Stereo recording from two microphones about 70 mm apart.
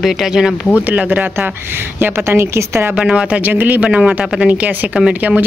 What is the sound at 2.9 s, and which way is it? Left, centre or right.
Speech, centre.